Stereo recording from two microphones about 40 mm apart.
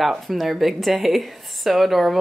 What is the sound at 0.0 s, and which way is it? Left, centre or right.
Speech, centre.